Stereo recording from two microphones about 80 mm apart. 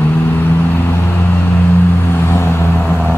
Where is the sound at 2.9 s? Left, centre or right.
Centre.